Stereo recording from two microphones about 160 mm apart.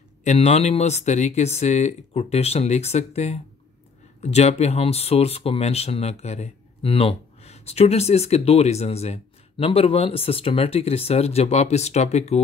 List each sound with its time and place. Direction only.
0.2 s speech: 45° left (ahead or behind)